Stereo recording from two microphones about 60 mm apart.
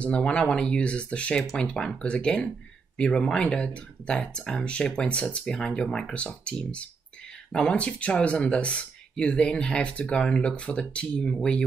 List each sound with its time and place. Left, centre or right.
0.0 s speech: centre